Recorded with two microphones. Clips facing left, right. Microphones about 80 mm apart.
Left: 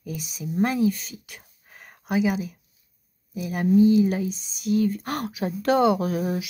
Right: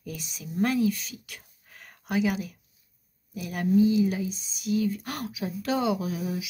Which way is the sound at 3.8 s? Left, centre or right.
Left.